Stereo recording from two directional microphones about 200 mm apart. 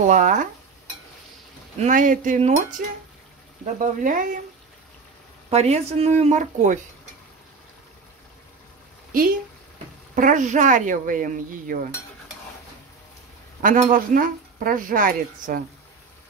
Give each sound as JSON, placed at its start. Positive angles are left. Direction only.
{"t": 0.0, "sound": "speech", "side_deg": -40}
{"t": 1.8, "sound": "speech", "side_deg": -40}
{"t": 3.8, "sound": "speech", "side_deg": -40}
{"t": 5.5, "sound": "speech", "side_deg": -30}
{"t": 10.1, "sound": "speech", "side_deg": -40}
{"t": 13.6, "sound": "speech", "side_deg": -45}